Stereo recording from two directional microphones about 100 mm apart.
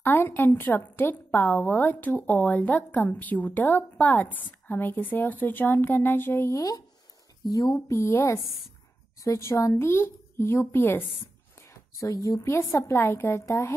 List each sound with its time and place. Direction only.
0.0 s speech: 20° left (ahead or behind); by 8.0 s 40° left (ahead or behind)
8.0 s speech: 25° left (ahead or behind)
11.6 s speech: 30° left (ahead or behind)